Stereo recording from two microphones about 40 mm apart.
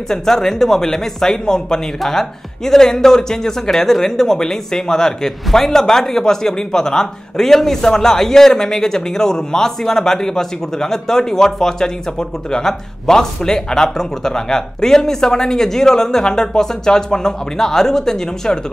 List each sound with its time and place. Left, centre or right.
0.1 s speech: centre